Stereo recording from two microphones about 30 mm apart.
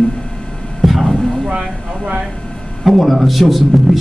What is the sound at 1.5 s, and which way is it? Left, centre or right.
Speech, right.